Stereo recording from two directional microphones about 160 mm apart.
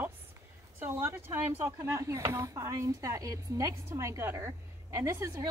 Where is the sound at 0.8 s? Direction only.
15° right (ahead or behind).